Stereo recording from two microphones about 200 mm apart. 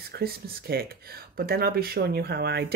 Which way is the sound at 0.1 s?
50° right (ahead or behind).